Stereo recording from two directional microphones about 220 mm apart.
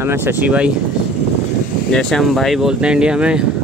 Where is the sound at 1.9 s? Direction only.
Centre (ahead or behind).